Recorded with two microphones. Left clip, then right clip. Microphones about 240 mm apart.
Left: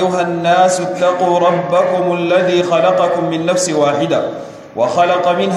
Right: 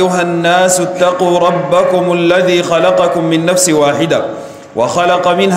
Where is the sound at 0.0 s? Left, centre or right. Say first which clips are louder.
Right 3 dB; right.